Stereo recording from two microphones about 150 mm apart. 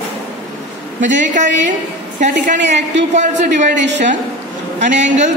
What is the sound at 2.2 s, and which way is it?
A woman's voice, 55° right (ahead or behind).